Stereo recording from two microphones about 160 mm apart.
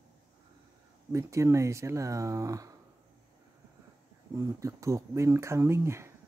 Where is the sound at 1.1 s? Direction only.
20° right (ahead or behind).